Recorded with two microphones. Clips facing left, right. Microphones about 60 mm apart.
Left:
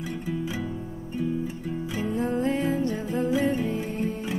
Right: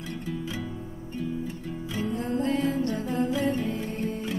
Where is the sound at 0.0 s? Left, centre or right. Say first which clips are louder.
Left 3 dB; centre.